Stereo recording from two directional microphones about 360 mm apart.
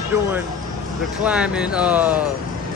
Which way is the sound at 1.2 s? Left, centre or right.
Centre.